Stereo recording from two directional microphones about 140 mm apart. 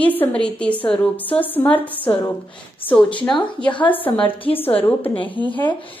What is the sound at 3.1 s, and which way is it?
Speech, 35° left (ahead or behind).